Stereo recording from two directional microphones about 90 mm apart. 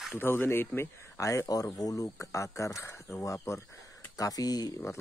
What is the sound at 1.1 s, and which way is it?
Speech, 35° left (ahead or behind).